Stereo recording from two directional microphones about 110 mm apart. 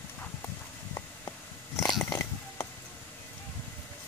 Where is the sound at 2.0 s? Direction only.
30° left (ahead or behind).